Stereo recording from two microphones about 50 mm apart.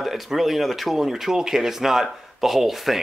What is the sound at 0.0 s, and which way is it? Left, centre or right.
Speech, centre.